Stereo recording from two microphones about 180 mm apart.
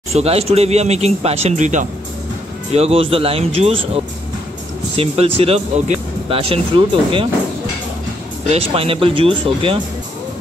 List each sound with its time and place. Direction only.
0.1 s speech: 35° right (ahead or behind)
8.5 s speech: 35° right (ahead or behind)